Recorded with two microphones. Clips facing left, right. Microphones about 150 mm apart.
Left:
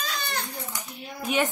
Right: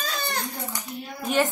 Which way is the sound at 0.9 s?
Centre (ahead or behind).